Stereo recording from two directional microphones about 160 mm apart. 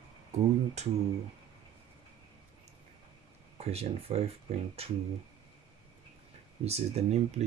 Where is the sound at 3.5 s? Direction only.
40° right (ahead or behind).